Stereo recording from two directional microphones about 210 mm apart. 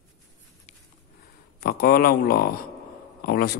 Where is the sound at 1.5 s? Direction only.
45° left (ahead or behind).